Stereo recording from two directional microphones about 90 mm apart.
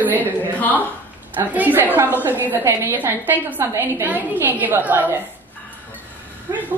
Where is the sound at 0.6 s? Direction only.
20° left (ahead or behind).